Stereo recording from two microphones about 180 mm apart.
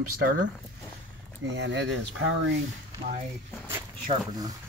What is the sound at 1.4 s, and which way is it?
Speech, 80° right.